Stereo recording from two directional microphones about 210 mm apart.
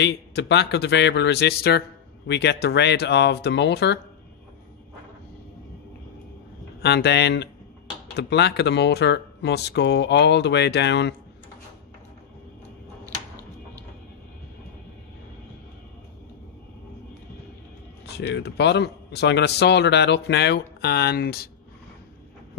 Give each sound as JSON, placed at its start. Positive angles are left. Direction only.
{"t": 0.0, "sound": "a man's voice", "side_deg": 55}
{"t": 6.8, "sound": "speech", "side_deg": 50}
{"t": 18.0, "sound": "speech", "side_deg": 55}